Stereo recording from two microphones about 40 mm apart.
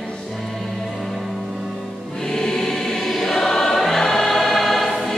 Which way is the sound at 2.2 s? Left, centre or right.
Centre.